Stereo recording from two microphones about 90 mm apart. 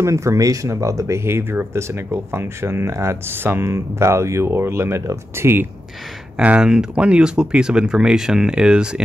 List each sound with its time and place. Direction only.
0.0 s speech: 35° right (ahead or behind)
6.3 s speech: 10° right (ahead or behind)